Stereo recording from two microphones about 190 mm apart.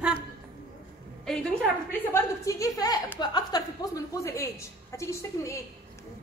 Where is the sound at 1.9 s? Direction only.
10° left (ahead or behind).